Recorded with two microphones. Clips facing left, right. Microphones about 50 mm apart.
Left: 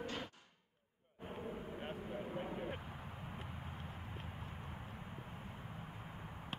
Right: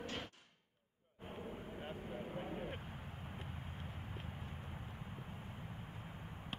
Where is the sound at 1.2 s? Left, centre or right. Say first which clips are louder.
Left 2 dB; centre.